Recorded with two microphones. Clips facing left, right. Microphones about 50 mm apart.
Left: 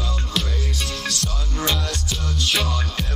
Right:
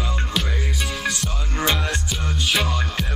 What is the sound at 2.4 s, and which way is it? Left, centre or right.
Music, centre.